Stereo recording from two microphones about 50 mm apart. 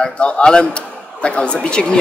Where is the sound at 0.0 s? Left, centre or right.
Centre.